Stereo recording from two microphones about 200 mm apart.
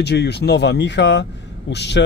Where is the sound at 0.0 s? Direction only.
55° left (ahead or behind).